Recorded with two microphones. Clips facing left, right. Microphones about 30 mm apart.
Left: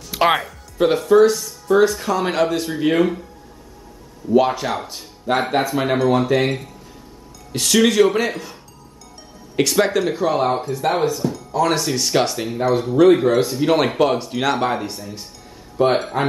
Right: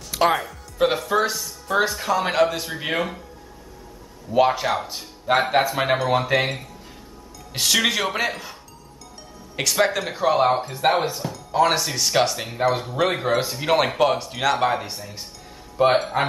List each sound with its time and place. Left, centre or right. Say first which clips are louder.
0.1 s music: left 3 dB; centre
0.4 s speech: left 2 dB; centre
4.3 s speech: left 2 dB; centre
7.5 s speech: left 6 dB; centre
9.6 s speech: left 4 dB; centre
10.7 s speech: left 2 dB; right
11.7 s speech: left 2 dB; centre
12.5 s speech: left 6 dB; centre